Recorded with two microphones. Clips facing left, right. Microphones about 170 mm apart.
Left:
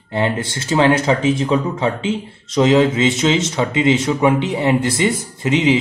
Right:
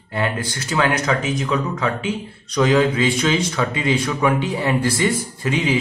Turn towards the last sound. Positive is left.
turn(degrees=20)  # may be behind; listen again after turning